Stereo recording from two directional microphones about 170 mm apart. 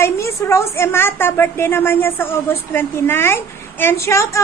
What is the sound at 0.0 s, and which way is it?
Speech, 15° left (ahead or behind).